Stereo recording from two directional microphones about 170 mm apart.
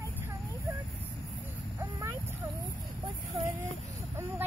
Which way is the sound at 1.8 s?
15° right (ahead or behind).